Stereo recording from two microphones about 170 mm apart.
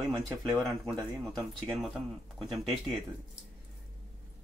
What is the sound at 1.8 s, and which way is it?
Speech, centre (ahead or behind).